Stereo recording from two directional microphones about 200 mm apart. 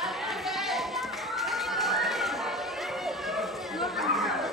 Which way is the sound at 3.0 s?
Centre (ahead or behind).